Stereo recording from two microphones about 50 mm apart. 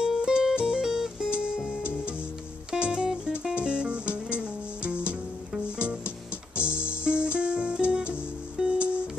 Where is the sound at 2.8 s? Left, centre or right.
Centre.